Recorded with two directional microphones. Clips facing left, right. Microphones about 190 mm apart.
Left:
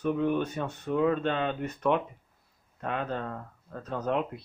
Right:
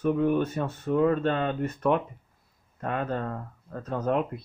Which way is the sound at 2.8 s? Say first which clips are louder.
Right 3 dB; 5° right (ahead or behind).